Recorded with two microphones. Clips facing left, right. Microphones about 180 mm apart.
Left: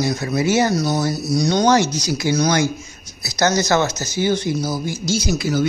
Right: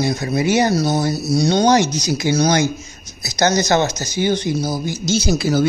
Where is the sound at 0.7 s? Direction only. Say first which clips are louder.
Right 2 dB; 25° right (ahead or behind).